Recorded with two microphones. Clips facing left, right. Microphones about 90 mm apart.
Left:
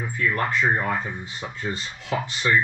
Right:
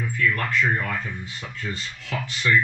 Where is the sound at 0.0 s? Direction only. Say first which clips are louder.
Even; 25° left (ahead or behind).